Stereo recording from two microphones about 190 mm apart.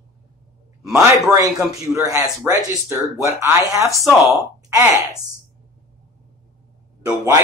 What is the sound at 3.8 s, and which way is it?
Speech, centre (ahead or behind).